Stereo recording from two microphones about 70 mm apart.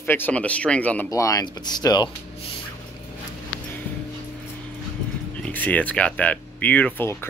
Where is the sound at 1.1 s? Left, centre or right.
Left.